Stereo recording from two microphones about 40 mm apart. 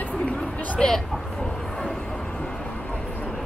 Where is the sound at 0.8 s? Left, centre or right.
Centre.